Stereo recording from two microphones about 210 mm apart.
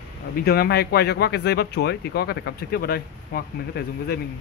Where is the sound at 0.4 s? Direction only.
50° left (ahead or behind).